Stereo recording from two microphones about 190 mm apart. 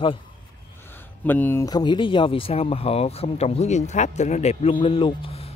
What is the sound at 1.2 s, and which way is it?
Speech, 10° left (ahead or behind).